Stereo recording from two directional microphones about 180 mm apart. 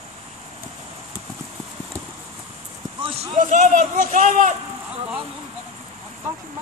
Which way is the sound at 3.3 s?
45° right (ahead or behind).